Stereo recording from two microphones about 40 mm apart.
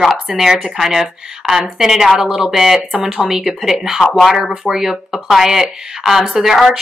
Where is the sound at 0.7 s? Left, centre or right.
Centre.